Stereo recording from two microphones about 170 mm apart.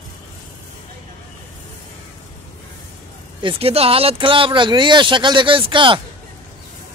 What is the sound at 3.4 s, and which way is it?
Speech, 30° right (ahead or behind).